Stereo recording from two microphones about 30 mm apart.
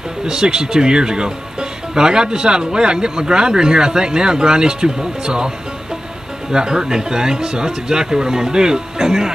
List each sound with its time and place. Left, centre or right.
0.2 s speech: right
6.5 s speech: right